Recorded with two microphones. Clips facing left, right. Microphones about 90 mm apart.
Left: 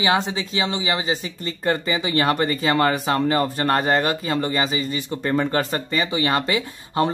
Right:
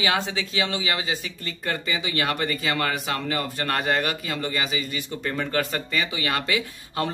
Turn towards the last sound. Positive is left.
turn(degrees=30)  # may be behind; listen again after turning